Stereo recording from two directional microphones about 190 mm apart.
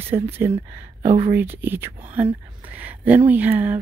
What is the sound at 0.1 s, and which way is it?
Speech, 10° right (ahead or behind).